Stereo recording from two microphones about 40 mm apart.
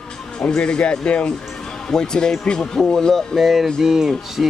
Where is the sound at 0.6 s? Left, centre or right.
Left.